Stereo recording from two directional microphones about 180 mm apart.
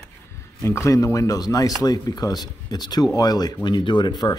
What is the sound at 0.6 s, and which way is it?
Speech, 15° left (ahead or behind).